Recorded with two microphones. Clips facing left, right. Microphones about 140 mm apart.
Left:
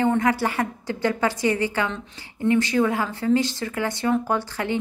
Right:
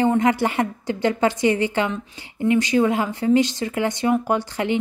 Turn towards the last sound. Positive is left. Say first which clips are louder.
# right 3 dB
turn(degrees=-20)  # may be behind; listen again after turning